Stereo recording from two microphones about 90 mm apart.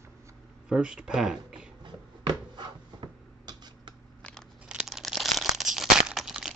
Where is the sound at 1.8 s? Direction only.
55° right (ahead or behind).